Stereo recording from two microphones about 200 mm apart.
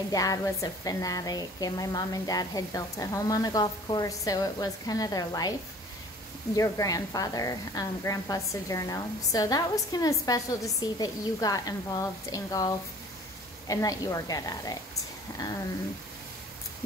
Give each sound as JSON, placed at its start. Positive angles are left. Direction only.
{"t": 0.1, "sound": "a woman's voice", "side_deg": 15}
{"t": 6.5, "sound": "a woman's voice", "side_deg": 15}